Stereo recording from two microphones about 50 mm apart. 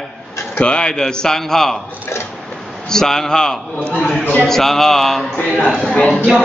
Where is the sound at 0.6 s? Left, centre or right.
Centre.